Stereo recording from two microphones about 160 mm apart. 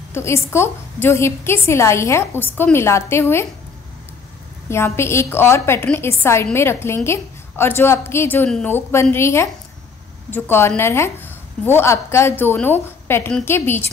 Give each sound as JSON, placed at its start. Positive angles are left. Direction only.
{"t": 0.1, "sound": "a woman's voice", "side_deg": 15}
{"t": 4.6, "sound": "a woman's voice", "side_deg": 15}